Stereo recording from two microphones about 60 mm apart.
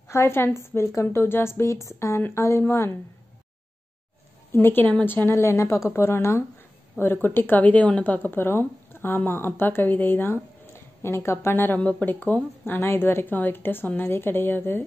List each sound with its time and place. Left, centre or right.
0.1 s speech: left
4.5 s a woman's voice: left
5.3 s speech: left
12.8 s speech: left